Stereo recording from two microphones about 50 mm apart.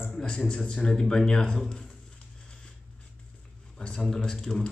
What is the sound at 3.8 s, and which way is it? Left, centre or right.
Speech, centre.